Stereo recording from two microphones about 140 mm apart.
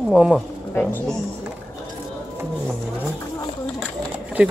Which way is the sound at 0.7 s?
10° left (ahead or behind).